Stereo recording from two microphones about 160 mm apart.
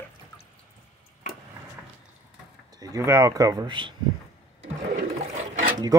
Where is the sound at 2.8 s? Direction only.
20° right (ahead or behind).